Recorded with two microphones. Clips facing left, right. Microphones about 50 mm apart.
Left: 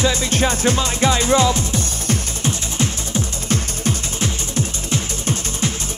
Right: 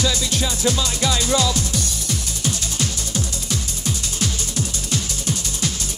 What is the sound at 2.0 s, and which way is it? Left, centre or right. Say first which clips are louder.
Music: left 4 dB; left.